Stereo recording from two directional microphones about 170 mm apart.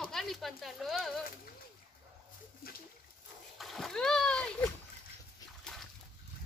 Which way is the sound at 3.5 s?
Centre (ahead or behind).